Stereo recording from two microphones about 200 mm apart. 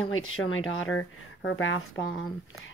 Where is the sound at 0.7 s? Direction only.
75° left (ahead or behind).